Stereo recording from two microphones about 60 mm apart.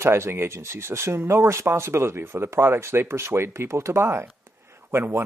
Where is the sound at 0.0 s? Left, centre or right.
Right.